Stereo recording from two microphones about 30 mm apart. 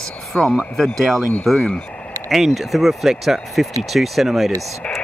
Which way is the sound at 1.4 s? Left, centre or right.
Centre.